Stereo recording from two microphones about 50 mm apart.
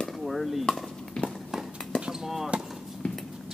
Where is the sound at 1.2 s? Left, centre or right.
Centre.